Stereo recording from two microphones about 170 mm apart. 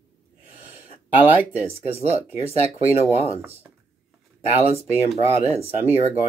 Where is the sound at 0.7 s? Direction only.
10° right (ahead or behind).